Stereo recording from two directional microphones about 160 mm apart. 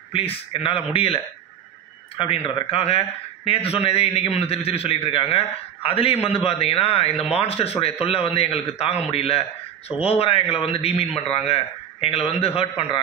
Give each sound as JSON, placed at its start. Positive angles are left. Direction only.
{"t": 0.1, "sound": "speech", "side_deg": 35}